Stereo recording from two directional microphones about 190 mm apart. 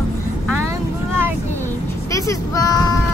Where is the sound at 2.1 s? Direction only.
15° left (ahead or behind).